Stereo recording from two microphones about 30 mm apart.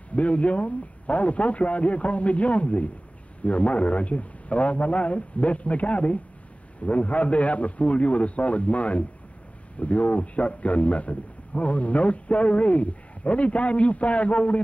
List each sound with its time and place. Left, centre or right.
0.1 s a man's voice: left